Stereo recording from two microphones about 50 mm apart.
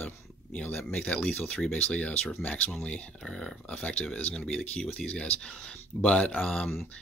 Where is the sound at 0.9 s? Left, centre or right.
Centre.